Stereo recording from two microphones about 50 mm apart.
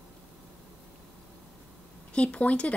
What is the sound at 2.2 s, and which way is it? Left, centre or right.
Speech, left.